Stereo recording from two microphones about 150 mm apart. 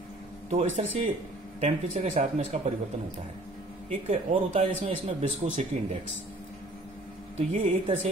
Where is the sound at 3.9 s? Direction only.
50° right (ahead or behind).